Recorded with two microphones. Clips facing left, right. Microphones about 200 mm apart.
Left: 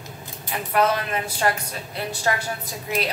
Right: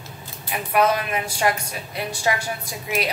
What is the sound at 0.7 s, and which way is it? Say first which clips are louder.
A woman's voice: right 1 dB; 15° right (ahead or behind).